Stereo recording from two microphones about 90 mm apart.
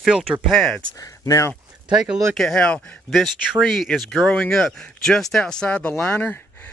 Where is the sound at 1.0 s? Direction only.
35° left (ahead or behind).